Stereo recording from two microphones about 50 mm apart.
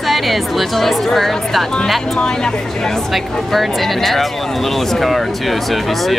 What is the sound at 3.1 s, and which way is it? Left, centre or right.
Speech, centre.